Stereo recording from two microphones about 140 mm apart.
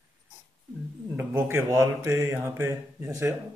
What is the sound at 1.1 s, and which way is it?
Mantra, 15° right (ahead or behind).